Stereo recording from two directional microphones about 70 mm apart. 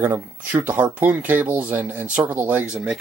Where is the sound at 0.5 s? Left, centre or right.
Right.